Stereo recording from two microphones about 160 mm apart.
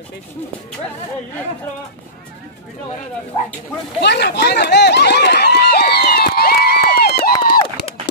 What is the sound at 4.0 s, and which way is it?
Run, 90° left.